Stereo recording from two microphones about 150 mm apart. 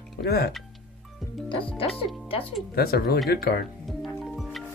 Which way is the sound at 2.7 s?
90° left.